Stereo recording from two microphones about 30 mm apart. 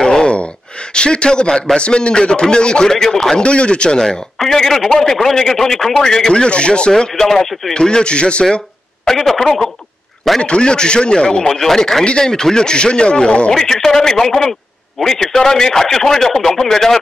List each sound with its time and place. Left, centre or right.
0.0 s sigh: left
0.9 s a man's voice: left
2.9 s speech: centre
3.3 s a man's voice: left
4.5 s speech: centre
5.9 s speech: left
6.4 s a man's voice: left
6.9 s speech: centre
7.3 s speech: centre
7.7 s a man's voice: left
9.0 s speech: centre
10.4 s a man's voice: left
11.4 s speech: centre; by 13.5 s left
13.5 s speech: centre